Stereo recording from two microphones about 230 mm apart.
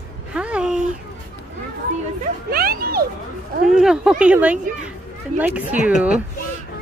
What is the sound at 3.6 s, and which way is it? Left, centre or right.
A woman's voice, centre.